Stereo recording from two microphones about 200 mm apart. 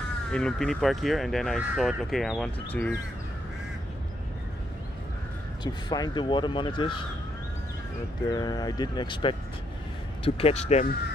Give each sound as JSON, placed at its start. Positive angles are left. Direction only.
{"t": 0.3, "sound": "speech", "side_deg": 5}
{"t": 5.6, "sound": "speech", "side_deg": 20}
{"t": 8.3, "sound": "speech", "side_deg": 20}